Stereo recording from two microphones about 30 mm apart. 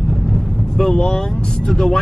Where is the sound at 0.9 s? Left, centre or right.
Left.